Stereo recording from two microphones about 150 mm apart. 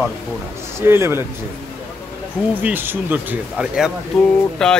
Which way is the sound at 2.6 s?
15° right (ahead or behind).